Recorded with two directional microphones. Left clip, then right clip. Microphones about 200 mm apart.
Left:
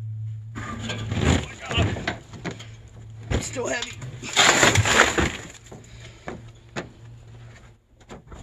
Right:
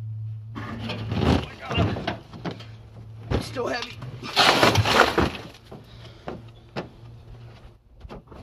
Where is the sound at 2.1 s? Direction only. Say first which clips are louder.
Left 1 dB; 15° left (ahead or behind).